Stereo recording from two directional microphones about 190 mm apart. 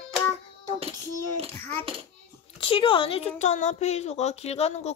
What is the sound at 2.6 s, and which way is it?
A woman's voice, 25° left (ahead or behind).